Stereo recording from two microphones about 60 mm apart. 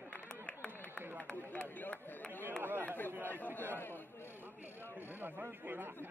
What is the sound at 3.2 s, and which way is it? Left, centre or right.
Speech, left.